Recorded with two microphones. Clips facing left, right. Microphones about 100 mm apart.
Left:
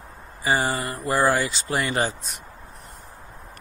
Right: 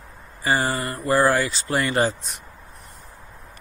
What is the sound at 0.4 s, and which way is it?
Speech, 5° left (ahead or behind).